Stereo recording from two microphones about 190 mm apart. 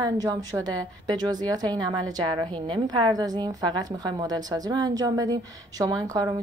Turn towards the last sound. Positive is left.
turn(degrees=-20)  # may be behind; listen again after turning